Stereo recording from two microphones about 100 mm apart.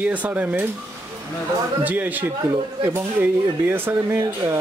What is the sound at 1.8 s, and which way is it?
Speech, 15° right (ahead or behind).